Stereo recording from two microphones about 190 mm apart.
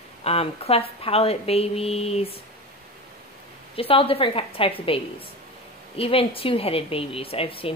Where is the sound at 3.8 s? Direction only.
30° left (ahead or behind).